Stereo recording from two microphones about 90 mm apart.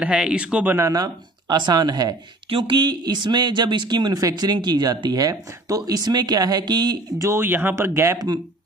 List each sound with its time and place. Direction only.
0.0 s speech: 10° right (ahead or behind)
0.7 s speech: 40° right (ahead or behind)
2.5 s speech: 75° right (ahead or behind)
2.8 s speech: 50° right (ahead or behind)
7.2 s speech: 25° right (ahead or behind)